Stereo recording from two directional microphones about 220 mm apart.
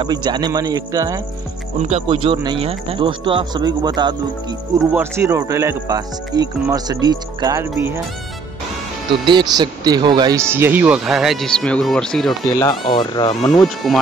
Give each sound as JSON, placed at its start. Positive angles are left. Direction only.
{"t": 0.0, "sound": "speech", "side_deg": -20}
{"t": 1.8, "sound": "speech", "side_deg": -30}
{"t": 9.2, "sound": "speech", "side_deg": -20}
{"t": 12.4, "sound": "speech", "side_deg": 15}